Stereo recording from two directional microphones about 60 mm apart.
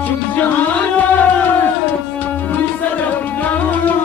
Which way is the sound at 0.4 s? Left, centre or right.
Left.